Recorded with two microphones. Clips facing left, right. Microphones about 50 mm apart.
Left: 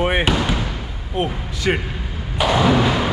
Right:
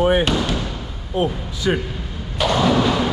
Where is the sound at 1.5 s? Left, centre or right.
Left.